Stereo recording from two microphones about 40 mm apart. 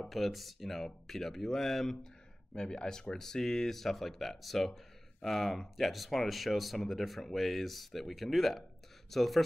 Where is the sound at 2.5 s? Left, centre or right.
Centre.